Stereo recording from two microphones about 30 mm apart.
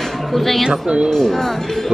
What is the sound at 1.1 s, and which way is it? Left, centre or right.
Speech, centre.